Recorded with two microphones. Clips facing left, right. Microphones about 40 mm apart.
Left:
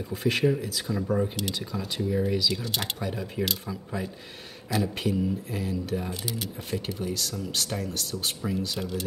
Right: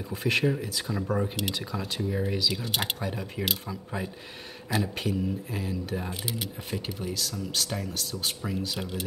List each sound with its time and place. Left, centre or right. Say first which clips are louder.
0.1 s speech: left 1 dB; centre
3.1 s speech: left 1 dB; centre
8.4 s speech: left 4 dB; centre
8.7 s speech: left 2 dB; centre